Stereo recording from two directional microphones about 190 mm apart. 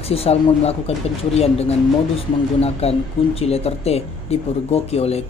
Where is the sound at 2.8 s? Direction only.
30° left (ahead or behind).